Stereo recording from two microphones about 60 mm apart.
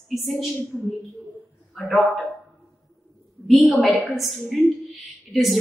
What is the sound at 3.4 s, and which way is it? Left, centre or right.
A woman's voice, centre.